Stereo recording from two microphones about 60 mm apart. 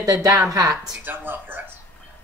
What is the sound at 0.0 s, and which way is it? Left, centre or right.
Speech, right.